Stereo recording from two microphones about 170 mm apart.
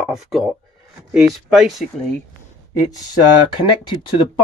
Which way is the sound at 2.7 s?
20° left (ahead or behind).